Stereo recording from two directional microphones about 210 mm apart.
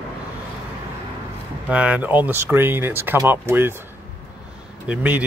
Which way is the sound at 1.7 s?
5° right (ahead or behind).